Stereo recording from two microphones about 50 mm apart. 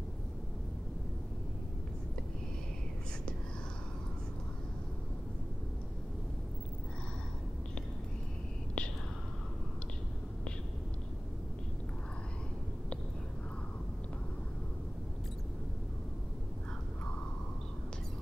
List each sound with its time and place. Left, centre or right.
8.8 s whispering: centre